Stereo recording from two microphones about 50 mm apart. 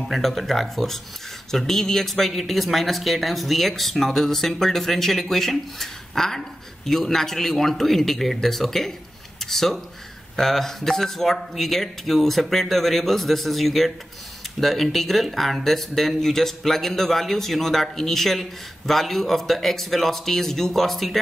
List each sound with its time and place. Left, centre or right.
0.0 s speech: centre